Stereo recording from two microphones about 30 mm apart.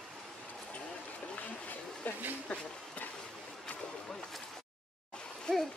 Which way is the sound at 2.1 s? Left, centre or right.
Left.